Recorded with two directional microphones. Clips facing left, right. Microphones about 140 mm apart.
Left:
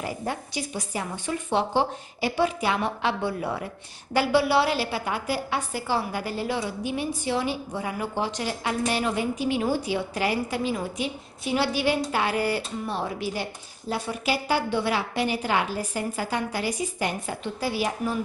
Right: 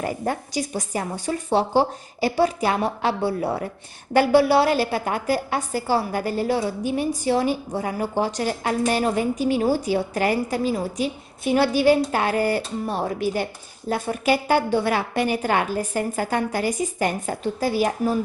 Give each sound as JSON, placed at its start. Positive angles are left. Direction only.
{"t": 0.0, "sound": "a woman's voice", "side_deg": -50}
{"t": 4.1, "sound": "a woman's voice", "side_deg": -45}